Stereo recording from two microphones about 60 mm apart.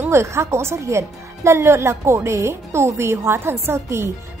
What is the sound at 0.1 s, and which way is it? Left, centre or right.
A woman's voice, right.